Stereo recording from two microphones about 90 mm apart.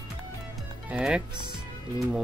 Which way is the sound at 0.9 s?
10° right (ahead or behind).